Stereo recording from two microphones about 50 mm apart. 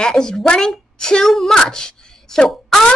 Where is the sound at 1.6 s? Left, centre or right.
Centre.